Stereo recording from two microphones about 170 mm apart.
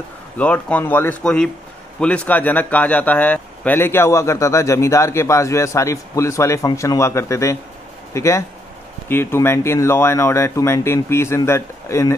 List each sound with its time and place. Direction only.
0.4 s speech: 10° left (ahead or behind)